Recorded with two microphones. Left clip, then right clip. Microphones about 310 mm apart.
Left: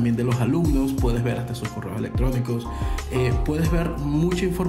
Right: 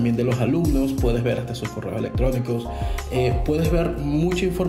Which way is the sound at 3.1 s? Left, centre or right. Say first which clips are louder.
Right 3 dB; centre.